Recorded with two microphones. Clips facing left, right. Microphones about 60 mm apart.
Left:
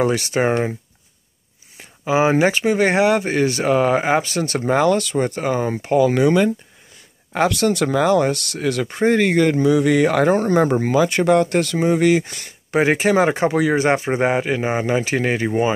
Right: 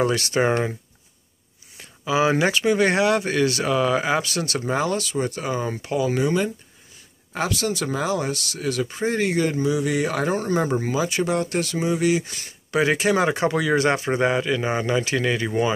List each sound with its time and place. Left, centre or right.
0.0 s speech: left
1.8 s speech: left
4.6 s speech: left
10.2 s speech: left
12.7 s speech: left